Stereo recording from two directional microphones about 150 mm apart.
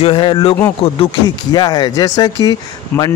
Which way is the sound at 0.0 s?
35° left (ahead or behind).